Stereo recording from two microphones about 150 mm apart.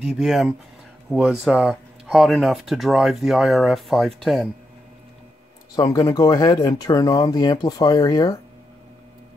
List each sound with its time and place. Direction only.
0.1 s speech: centre (ahead or behind)
5.8 s speech: 20° left (ahead or behind)